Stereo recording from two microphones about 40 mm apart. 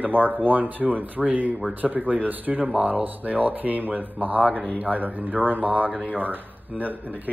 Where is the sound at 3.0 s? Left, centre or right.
Right.